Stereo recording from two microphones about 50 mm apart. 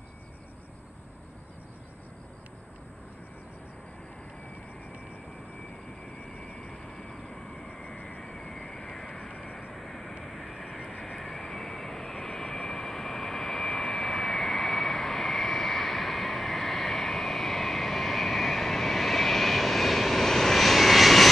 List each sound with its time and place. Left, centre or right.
6.3 s vehicle: left
6.7 s vehicle: centre